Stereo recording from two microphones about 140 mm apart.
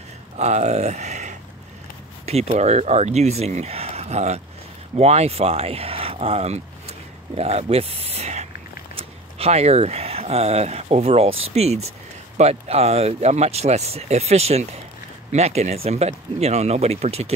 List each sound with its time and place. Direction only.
0.4 s speech: 55° right (ahead or behind)